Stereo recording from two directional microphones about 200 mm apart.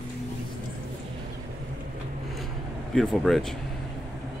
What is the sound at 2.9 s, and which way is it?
Speech, centre (ahead or behind).